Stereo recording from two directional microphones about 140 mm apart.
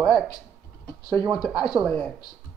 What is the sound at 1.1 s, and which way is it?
Speech, 35° right (ahead or behind).